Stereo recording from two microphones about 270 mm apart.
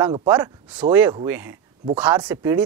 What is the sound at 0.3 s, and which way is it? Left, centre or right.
Speech, centre.